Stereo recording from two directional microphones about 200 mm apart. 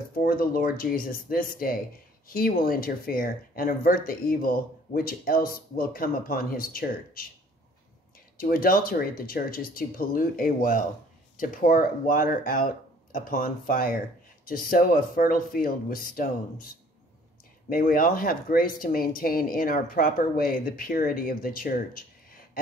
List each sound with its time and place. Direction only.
0.2 s speech: 45° left (ahead or behind)
8.4 s speech: 45° left (ahead or behind)
17.6 s speech: 45° left (ahead or behind)